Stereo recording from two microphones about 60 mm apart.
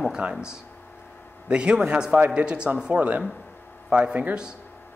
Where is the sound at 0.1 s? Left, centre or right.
Centre.